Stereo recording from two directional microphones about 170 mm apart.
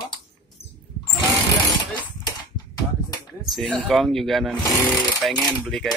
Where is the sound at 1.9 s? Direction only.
20° left (ahead or behind).